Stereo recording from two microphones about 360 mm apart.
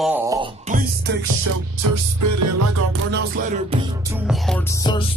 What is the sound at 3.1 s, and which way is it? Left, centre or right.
Music, right.